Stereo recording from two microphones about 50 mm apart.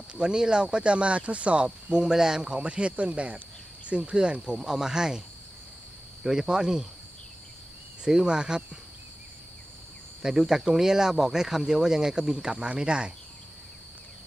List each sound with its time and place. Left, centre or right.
0.1 s speech: centre
6.2 s speech: centre
8.0 s speech: centre
10.2 s speech: centre